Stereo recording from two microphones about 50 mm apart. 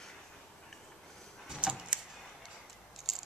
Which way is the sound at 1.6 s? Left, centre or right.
Right.